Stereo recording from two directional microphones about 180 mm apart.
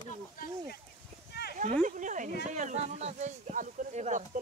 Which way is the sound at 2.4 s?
40° right (ahead or behind).